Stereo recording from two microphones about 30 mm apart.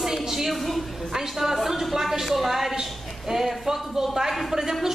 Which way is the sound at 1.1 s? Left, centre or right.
Centre.